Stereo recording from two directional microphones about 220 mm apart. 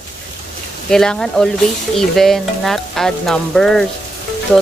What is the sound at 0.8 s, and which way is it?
Speech, centre (ahead or behind).